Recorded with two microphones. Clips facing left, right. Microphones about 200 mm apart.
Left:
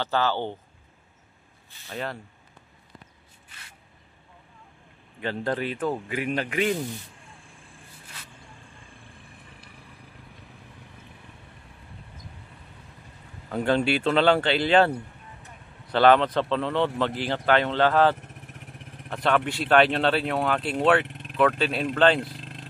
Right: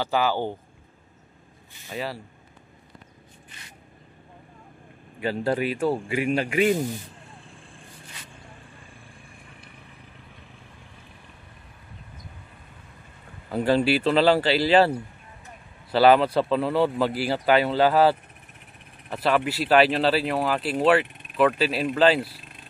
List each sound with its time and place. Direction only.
0.0 s speech: 10° right (ahead or behind)
1.9 s speech: 5° right (ahead or behind)
5.2 s speech: 10° right (ahead or behind)
13.5 s speech: 5° right (ahead or behind)
18.1 s vehicle: 90° left
19.0 s speech: 5° right (ahead or behind)
21.1 s vehicle: 90° left
21.4 s speech: 5° right (ahead or behind)
22.4 s vehicle: 90° left